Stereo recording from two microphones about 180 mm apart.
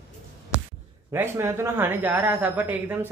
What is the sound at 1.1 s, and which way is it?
Speech, 15° right (ahead or behind).